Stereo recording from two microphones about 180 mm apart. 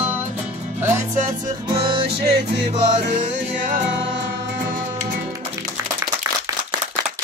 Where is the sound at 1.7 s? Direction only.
25° right (ahead or behind).